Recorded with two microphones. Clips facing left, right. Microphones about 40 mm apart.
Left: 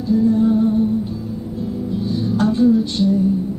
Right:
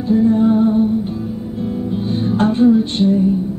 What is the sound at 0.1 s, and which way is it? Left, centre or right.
Music, right.